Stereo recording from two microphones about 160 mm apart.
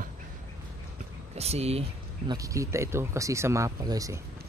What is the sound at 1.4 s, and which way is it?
Speech, 40° right (ahead or behind).